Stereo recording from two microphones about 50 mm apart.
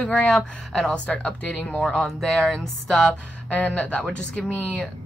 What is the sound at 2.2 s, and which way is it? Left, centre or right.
Speech, centre.